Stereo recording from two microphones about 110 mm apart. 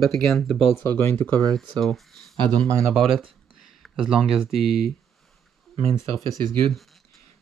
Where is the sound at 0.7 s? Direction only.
20° left (ahead or behind).